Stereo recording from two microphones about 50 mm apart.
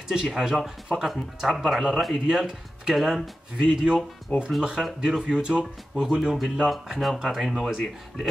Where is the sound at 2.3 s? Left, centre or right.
Centre.